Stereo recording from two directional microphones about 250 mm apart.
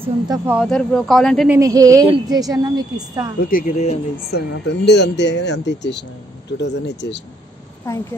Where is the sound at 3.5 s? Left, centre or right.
Left.